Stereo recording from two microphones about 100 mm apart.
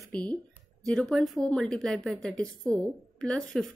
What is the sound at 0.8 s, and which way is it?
Speech, 5° left (ahead or behind).